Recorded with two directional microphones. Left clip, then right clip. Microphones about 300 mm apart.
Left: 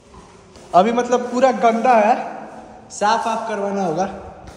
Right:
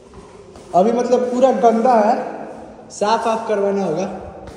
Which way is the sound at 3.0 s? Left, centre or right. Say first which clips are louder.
Right 1 dB; centre.